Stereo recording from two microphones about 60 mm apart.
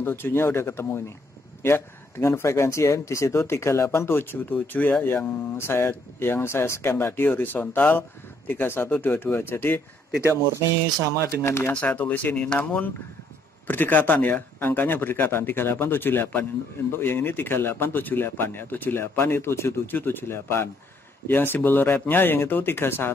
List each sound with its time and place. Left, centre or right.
0.0 s speech: left
4.5 s speech: left
5.0 s speech: left
11.3 s speech: left
11.7 s speech: left
19.9 s speech: left